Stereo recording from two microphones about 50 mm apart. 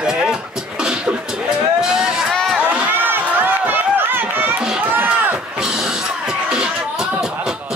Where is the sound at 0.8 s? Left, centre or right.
Centre.